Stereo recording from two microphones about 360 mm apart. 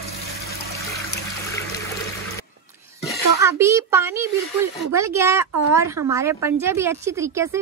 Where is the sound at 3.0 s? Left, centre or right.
Centre.